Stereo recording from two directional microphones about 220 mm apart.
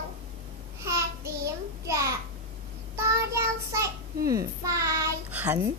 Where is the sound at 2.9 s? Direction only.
10° right (ahead or behind).